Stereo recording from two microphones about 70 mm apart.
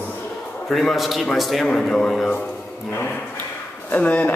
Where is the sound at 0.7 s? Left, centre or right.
Centre.